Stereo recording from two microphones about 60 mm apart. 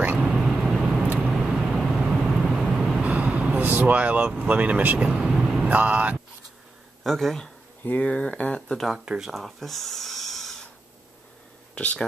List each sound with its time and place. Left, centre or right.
0.2 s vehicle: centre
3.0 s vehicle: right
3.6 s vehicle: right
3.9 s speech: right
5.3 s vehicle: centre
5.7 s speech: right
7.0 s speech: centre
8.0 s speech: centre
9.0 s speech: centre
9.3 s speech: centre
11.7 s speech: left